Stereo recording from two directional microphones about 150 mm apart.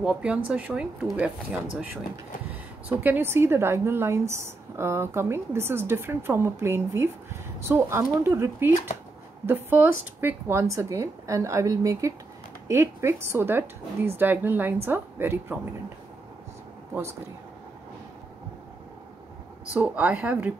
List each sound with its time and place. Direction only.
0.0 s a woman's voice: 5° right (ahead or behind)
2.9 s a woman's voice: 10° right (ahead or behind)
19.7 s a woman's voice: 10° right (ahead or behind)